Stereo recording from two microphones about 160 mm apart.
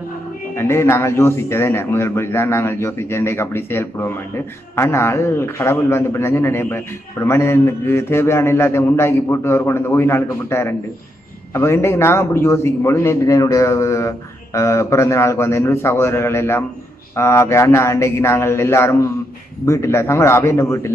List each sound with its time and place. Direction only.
0.6 s a man's voice: 15° left (ahead or behind)